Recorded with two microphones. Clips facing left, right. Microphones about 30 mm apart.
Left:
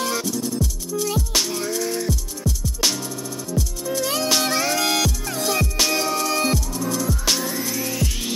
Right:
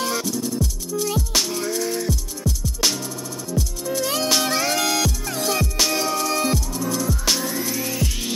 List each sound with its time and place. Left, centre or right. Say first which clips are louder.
0.0 s music: even; centre